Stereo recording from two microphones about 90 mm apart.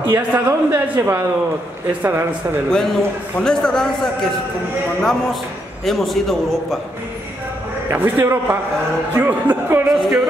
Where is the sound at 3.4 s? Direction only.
5° left (ahead or behind).